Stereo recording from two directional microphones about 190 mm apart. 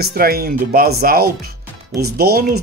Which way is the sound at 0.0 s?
55° right (ahead or behind).